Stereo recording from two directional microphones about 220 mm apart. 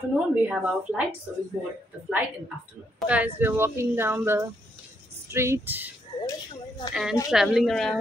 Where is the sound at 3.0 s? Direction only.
5° right (ahead or behind).